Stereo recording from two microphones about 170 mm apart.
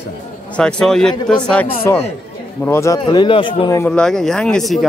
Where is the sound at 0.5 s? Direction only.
5° left (ahead or behind).